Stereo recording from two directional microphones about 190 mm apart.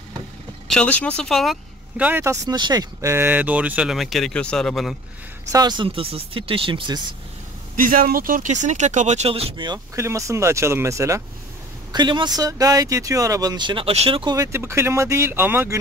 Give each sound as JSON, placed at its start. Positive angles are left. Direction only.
{"t": 0.7, "sound": "speech", "side_deg": 5}
{"t": 5.5, "sound": "speech", "side_deg": -20}
{"t": 7.7, "sound": "speech", "side_deg": -45}